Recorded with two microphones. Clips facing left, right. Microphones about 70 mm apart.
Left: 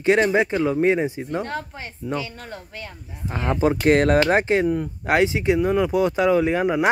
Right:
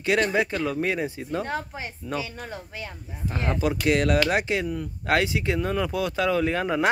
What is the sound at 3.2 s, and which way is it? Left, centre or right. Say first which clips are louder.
Speech: left 5 dB; left.